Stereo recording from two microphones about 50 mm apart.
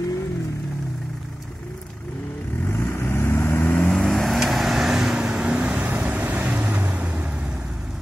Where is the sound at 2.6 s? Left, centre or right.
Left.